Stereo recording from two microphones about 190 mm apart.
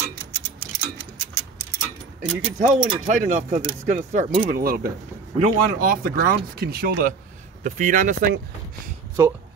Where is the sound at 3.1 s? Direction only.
40° right (ahead or behind).